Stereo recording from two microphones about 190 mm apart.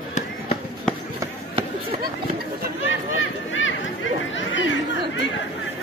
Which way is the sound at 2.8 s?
90° left.